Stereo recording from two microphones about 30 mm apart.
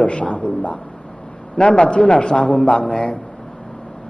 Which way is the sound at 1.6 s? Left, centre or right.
Left.